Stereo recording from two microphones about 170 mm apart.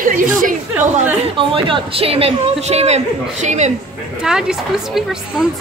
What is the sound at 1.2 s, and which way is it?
A woman's voice, 30° right (ahead or behind).